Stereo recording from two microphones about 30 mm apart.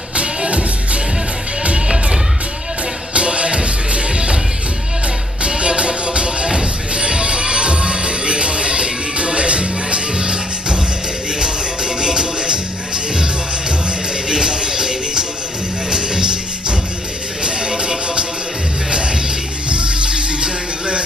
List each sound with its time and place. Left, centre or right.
3.2 s music: right
5.6 s music: right